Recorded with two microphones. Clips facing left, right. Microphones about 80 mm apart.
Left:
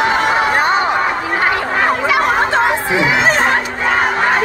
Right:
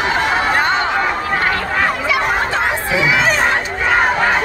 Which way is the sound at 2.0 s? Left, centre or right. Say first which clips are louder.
Left 3 dB; left.